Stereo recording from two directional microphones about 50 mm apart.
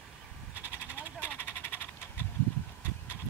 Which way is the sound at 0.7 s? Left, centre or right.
Right.